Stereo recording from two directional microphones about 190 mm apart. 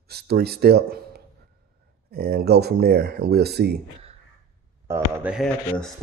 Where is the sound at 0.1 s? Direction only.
55° right (ahead or behind).